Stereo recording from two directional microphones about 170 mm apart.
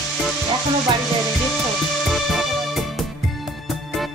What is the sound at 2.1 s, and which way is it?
Music, centre (ahead or behind).